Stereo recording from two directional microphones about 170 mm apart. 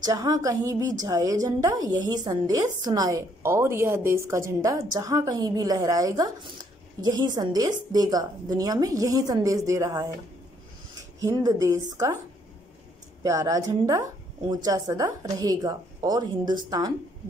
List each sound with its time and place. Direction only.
0.0 s a woman's voice: 20° right (ahead or behind)
13.2 s a woman's voice: 20° right (ahead or behind)